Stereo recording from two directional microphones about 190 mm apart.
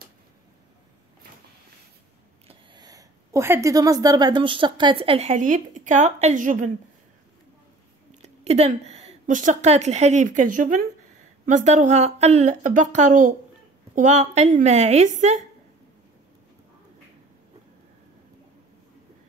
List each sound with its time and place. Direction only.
2.4 s a woman's voice: 20° right (ahead or behind); by 6.7 s 45° right (ahead or behind)
8.2 s a woman's voice: 35° right (ahead or behind)